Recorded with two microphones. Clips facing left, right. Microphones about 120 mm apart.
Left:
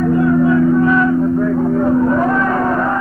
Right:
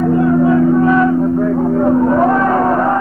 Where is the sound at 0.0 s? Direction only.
35° right (ahead or behind).